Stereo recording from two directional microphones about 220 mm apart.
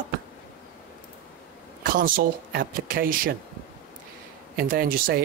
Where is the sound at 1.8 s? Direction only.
40° right (ahead or behind).